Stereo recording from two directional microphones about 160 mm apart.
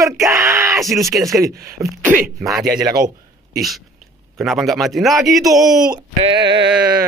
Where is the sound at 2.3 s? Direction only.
Centre (ahead or behind).